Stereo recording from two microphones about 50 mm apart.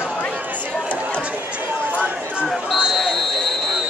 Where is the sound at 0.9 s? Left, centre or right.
Left.